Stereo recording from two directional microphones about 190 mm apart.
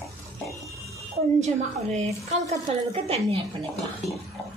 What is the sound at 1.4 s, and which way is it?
A woman's voice, 35° right (ahead or behind).